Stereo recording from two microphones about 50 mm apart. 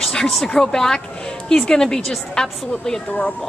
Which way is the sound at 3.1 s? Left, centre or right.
Left.